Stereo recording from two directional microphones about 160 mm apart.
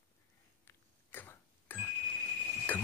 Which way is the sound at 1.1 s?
15° left (ahead or behind).